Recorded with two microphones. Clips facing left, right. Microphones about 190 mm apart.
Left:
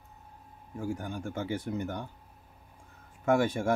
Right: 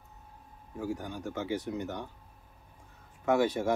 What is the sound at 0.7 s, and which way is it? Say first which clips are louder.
Speech: left 1 dB; 50° left (ahead or behind).